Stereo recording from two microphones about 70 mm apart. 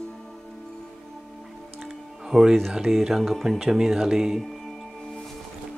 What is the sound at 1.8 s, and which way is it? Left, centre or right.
Music, centre.